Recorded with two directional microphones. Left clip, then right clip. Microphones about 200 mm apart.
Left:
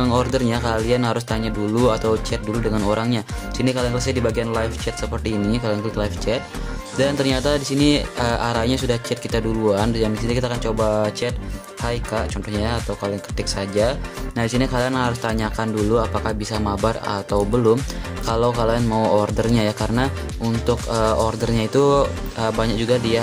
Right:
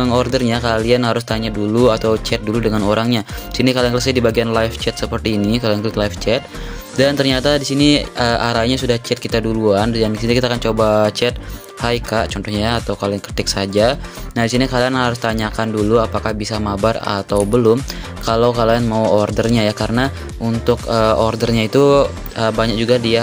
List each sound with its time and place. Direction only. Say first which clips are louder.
0.0 s speech: right 4 dB; 15° right (ahead or behind)